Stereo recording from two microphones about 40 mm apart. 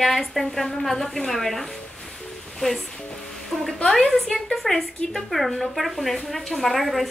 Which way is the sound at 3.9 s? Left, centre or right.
Centre.